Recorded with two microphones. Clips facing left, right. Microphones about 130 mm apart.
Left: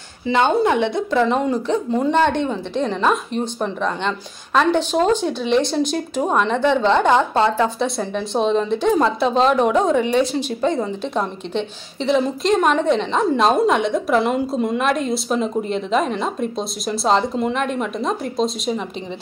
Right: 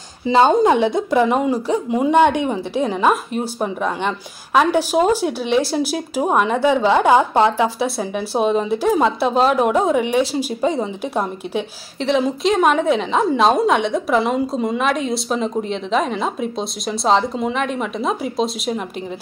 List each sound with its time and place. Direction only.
0.5 s speech: 25° right (ahead or behind)
0.9 s a woman's voice: 15° right (ahead or behind)